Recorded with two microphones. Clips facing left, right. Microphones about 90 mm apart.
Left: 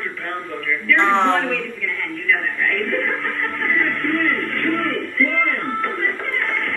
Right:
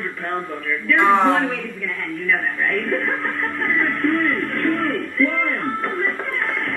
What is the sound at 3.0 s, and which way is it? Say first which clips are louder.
Speech: even; 20° right (ahead or behind).